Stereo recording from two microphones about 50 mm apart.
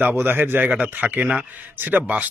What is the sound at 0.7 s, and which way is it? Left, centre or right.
A man's voice, right.